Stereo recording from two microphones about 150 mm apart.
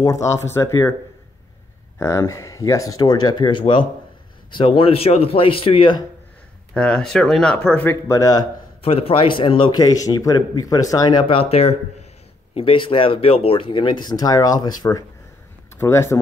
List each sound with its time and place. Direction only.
0.0 s speech: 20° left (ahead or behind)
2.0 s a man's voice: 20° left (ahead or behind)
6.7 s speech: 5° left (ahead or behind); by 8.5 s 25° left (ahead or behind)
8.8 s a man's voice: 40° left (ahead or behind); by 16.2 s 20° left (ahead or behind)